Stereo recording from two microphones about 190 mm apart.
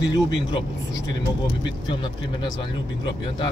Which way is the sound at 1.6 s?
25° left (ahead or behind).